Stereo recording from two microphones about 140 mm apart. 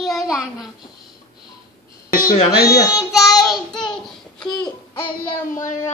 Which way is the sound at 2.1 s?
90° left.